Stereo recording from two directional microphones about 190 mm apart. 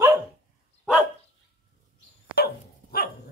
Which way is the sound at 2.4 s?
55° left (ahead or behind).